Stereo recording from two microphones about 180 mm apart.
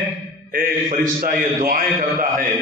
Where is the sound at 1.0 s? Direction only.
50° right (ahead or behind).